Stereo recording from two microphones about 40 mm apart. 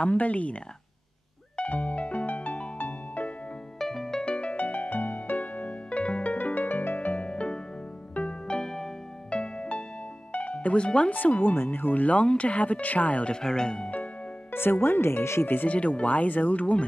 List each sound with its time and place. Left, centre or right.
0.0 s speech: left
1.6 s music: left
3.8 s music: centre
4.2 s music: left
4.6 s music: left
6.3 s music: left
7.0 s music: left
8.5 s music: centre
10.3 s music: left
11.1 s speech: left
11.5 s speech: left
13.3 s speech: centre
14.5 s speech: left
15.7 s speech: left